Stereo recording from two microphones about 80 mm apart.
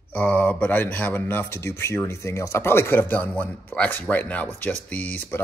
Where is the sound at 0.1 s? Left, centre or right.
Centre.